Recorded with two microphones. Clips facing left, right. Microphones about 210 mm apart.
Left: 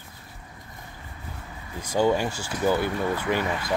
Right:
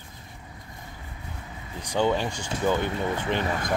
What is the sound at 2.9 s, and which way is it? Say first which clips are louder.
Speech: left 1 dB; 20° right (ahead or behind).